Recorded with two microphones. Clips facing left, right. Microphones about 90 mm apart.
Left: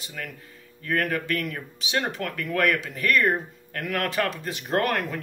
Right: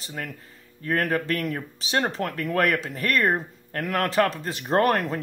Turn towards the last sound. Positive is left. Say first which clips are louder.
# right 4 dB
turn(degrees=-35)  # may be behind; listen again after turning